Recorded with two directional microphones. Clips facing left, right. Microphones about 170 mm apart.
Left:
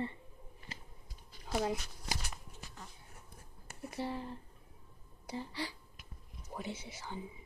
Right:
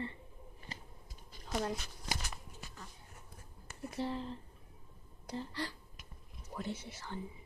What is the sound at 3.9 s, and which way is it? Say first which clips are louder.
Speech: right 1 dB; 10° left (ahead or behind).